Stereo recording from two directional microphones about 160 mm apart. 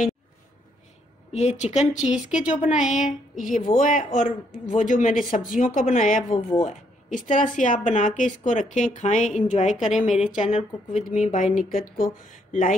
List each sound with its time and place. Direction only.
1.3 s speech: 45° left (ahead or behind)
2.0 s speech: 5° right (ahead or behind)
2.7 s speech: 50° left (ahead or behind)